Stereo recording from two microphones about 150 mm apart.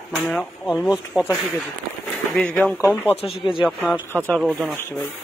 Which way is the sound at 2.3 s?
10° left (ahead or behind).